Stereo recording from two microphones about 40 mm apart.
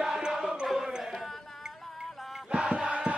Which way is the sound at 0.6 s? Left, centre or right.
Centre.